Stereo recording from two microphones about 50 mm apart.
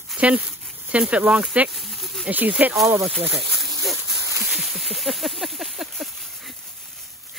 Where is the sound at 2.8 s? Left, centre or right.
Right.